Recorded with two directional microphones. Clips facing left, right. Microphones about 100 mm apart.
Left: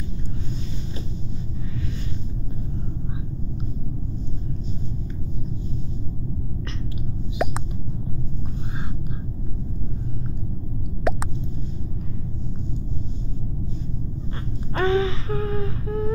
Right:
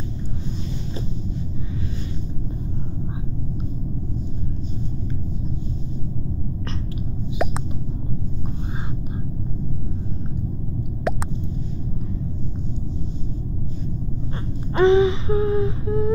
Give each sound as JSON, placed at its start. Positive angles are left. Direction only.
{"t": 7.4, "sound": "a sound", "side_deg": 0}
{"t": 11.1, "sound": "plop", "side_deg": 0}
{"t": 14.7, "sound": "wail", "side_deg": -20}